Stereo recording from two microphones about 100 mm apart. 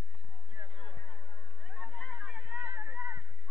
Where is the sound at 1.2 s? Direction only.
50° left (ahead or behind).